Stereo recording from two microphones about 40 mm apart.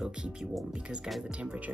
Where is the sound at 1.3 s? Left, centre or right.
Right.